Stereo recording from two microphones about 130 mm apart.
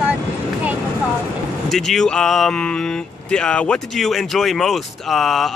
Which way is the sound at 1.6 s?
Centre (ahead or behind).